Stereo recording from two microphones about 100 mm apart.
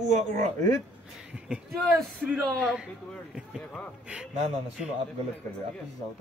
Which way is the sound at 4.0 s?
10° right (ahead or behind).